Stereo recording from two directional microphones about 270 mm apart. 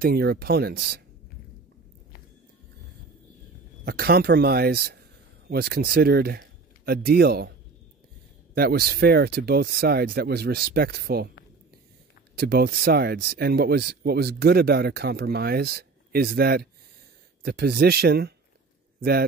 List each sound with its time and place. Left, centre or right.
0.0 s speech: right
3.8 s speech: right
8.5 s speech: right
12.4 s speech: right